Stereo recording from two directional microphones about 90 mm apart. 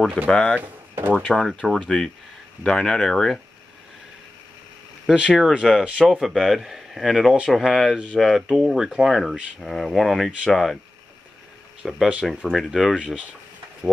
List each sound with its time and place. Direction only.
0.3 s speech: 10° left (ahead or behind)
0.6 s speech: 20° right (ahead or behind)
1.3 s speech: centre (ahead or behind)
1.6 s speech: 10° left (ahead or behind)
5.0 s speech: 10° right (ahead or behind)
11.8 s speech: centre (ahead or behind)